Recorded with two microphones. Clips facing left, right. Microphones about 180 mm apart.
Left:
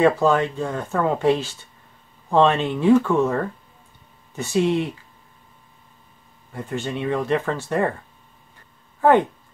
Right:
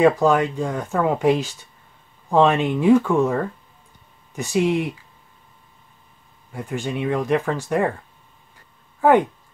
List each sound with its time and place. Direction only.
0.0 s speech: 10° right (ahead or behind)
6.5 s speech: 10° right (ahead or behind)